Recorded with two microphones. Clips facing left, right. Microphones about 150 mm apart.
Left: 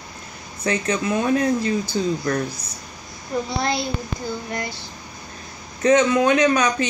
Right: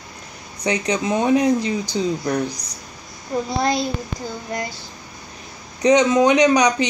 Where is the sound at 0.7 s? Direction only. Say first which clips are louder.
Right 1 dB; 15° right (ahead or behind).